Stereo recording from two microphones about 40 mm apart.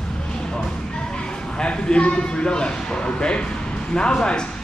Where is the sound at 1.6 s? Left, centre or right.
Left.